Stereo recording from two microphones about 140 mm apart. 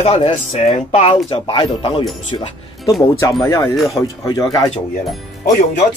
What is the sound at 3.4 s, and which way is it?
Speech, 20° left (ahead or behind).